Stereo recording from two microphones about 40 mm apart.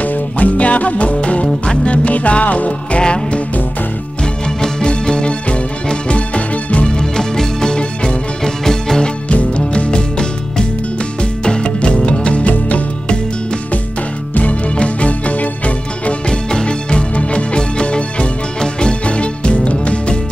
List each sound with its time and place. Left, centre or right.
0.0 s music: left
3.0 s music: left
7.0 s music: centre
9.3 s music: left
11.4 s music: left
14.3 s music: left
16.4 s music: left